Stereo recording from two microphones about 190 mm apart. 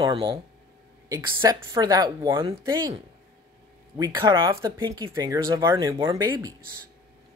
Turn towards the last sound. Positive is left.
turn(degrees=-20)  # may be behind; listen again after turning